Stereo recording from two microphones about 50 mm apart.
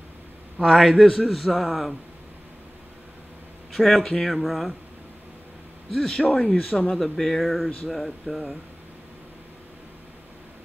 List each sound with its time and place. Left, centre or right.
0.7 s speech: centre
3.7 s speech: centre
5.9 s a man's voice: centre
6.9 s speech: centre